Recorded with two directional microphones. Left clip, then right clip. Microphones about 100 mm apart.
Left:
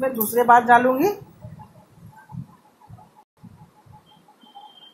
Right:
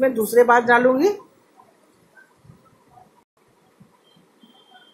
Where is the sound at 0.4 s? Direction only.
5° left (ahead or behind).